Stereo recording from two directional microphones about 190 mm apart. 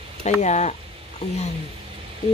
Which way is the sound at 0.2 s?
35° left (ahead or behind).